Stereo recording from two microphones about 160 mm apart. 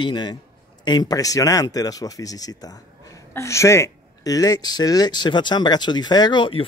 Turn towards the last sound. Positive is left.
turn(degrees=30)  # may be behind; listen again after turning